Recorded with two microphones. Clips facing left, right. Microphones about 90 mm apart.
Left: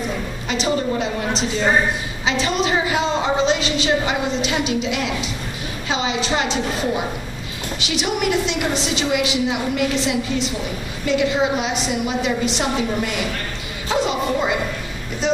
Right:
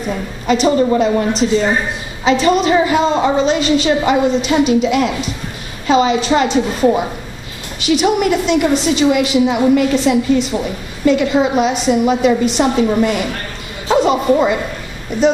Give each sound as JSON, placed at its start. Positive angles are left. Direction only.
{"t": 0.5, "sound": "a woman's voice", "side_deg": -45}
{"t": 13.8, "sound": "music", "side_deg": -45}